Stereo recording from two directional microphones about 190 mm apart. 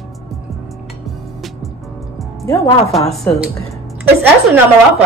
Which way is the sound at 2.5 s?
15° left (ahead or behind).